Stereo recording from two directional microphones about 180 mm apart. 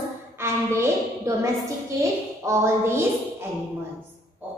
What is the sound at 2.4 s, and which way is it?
Speech, 15° right (ahead or behind).